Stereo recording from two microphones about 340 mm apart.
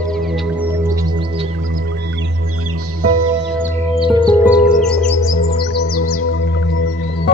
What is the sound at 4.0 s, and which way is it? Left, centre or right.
Music, centre.